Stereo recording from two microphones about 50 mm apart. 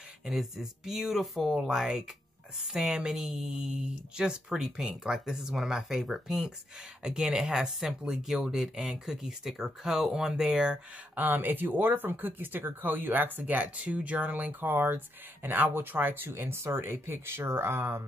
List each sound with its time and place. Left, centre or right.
0.2 s speech: centre
11.1 s speech: right